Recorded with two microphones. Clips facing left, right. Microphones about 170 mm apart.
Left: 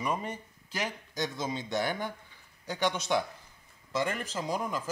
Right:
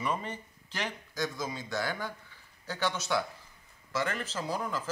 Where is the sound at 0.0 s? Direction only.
10° left (ahead or behind).